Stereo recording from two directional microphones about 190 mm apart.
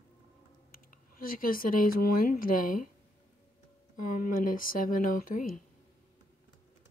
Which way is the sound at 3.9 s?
45° left (ahead or behind).